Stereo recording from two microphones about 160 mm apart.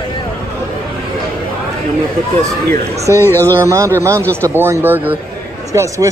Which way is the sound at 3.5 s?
20° right (ahead or behind).